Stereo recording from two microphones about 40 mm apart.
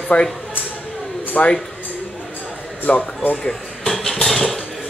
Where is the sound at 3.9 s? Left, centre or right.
Centre.